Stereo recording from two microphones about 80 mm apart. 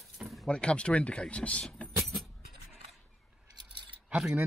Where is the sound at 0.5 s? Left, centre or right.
Centre.